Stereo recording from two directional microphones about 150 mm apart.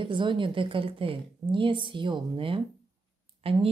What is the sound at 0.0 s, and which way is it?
Speech, 30° right (ahead or behind).